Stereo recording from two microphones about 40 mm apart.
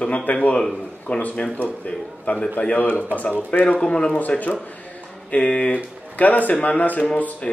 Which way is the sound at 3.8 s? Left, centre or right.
Left.